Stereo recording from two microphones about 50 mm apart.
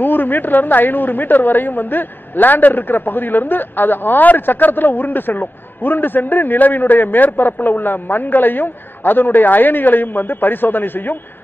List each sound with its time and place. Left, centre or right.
0.0 s a woman's voice: left